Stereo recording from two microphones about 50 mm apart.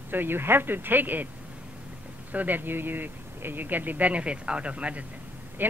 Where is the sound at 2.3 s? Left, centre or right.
Right.